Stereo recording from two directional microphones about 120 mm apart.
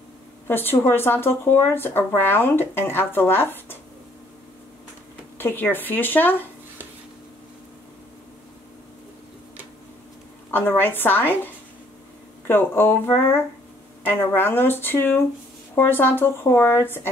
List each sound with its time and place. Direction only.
0.5 s speech: 20° left (ahead or behind)
5.4 s speech: 15° left (ahead or behind)
10.5 s speech: 15° left (ahead or behind)